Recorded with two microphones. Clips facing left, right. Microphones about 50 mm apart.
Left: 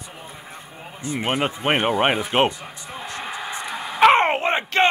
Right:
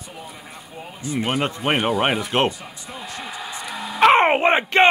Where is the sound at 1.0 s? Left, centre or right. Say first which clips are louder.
Right 2 dB; left.